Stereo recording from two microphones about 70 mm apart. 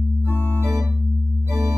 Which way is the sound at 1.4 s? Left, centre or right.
Right.